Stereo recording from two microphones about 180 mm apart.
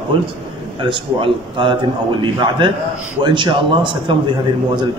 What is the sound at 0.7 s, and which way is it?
A man's voice, 25° right (ahead or behind).